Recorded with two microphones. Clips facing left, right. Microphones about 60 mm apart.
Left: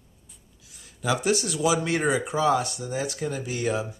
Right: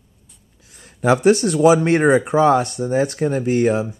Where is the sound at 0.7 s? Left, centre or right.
Right.